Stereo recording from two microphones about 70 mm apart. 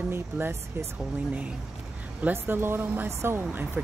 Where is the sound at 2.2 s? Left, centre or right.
Right.